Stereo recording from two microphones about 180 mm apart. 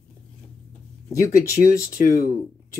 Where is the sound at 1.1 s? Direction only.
15° left (ahead or behind).